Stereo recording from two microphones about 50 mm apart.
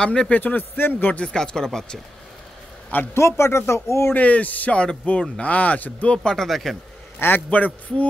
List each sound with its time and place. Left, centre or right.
0.0 s speech: centre
0.3 s a man's voice: left
1.2 s speech: centre
3.2 s speech: left
4.1 s a man's voice: left
4.7 s speech: left
6.1 s speech: centre
7.2 s a man's voice: left
7.4 s speech: left